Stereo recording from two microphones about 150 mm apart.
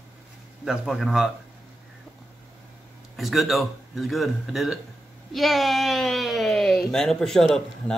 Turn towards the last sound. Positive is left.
turn(degrees=5)  # may be behind; listen again after turning